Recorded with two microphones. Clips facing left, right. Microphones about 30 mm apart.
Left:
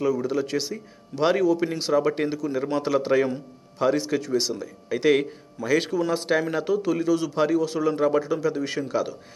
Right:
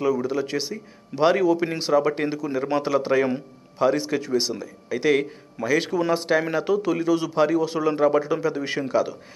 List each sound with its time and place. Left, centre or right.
0.0 s a man's voice: centre
4.8 s speech: centre
5.9 s a man's voice: centre